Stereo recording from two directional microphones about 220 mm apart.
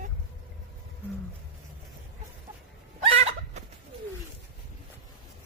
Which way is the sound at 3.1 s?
30° right (ahead or behind).